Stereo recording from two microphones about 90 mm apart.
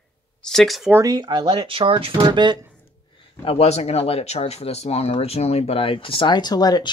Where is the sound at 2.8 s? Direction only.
90° left.